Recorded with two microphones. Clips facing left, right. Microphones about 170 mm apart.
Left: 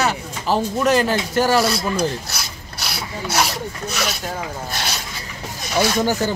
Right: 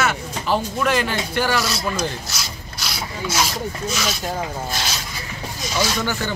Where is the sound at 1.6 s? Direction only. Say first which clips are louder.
Left 4 dB; 55° left (ahead or behind).